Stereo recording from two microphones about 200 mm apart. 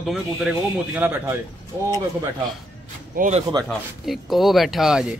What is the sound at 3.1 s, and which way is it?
Speech, 40° right (ahead or behind).